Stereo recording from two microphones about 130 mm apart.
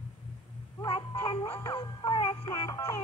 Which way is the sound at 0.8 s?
35° left (ahead or behind).